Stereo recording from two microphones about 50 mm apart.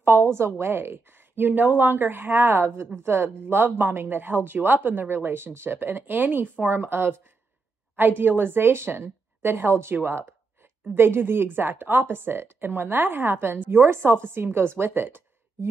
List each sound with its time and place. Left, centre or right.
0.0 s a woman's voice: right
1.5 s speech: right
6.7 s speech: right
8.2 s speech: right